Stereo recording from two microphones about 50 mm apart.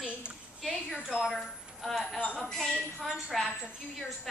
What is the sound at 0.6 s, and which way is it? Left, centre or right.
A woman's voice, centre.